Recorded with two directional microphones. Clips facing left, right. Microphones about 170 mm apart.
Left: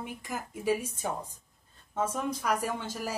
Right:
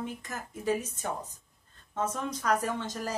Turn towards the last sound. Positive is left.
turn(degrees=10)  # may be behind; listen again after turning